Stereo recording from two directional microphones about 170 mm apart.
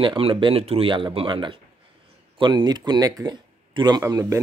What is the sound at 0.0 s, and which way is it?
Speech, 30° right (ahead or behind).